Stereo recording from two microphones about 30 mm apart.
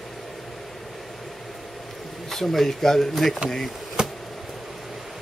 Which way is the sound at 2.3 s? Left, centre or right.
Centre.